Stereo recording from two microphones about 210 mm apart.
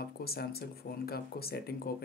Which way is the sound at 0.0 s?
45° left (ahead or behind).